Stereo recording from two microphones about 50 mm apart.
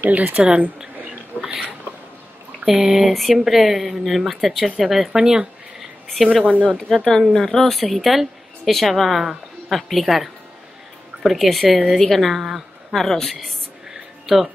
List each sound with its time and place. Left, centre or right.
0.0 s speech: right
1.3 s a sound: left
2.7 s speech: centre
3.1 s a woman's voice: centre
6.0 s a woman's voice: centre
6.6 s a woman's voice: centre